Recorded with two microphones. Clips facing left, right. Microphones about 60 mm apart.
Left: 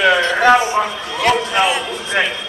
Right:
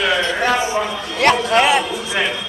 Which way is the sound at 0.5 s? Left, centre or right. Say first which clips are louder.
Left 4 dB; left.